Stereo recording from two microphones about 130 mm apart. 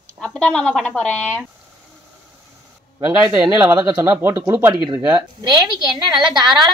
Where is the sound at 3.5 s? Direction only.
30° right (ahead or behind).